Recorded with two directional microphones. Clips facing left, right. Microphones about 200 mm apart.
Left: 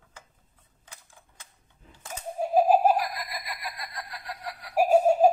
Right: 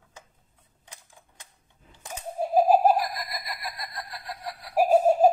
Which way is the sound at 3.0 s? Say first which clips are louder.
Right 1 dB; 40° right (ahead or behind).